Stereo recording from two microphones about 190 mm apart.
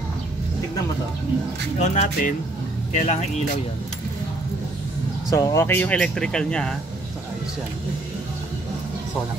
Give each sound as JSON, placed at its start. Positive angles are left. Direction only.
{"t": 1.8, "sound": "speech", "side_deg": 40}
{"t": 5.3, "sound": "speech", "side_deg": 15}